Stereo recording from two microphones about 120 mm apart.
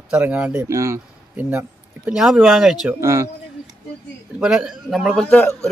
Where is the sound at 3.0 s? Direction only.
25° right (ahead or behind).